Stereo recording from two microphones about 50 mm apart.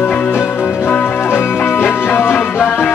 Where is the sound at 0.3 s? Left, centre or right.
Left.